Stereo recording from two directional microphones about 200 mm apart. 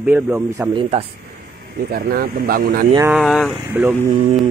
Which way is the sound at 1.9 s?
50° right (ahead or behind).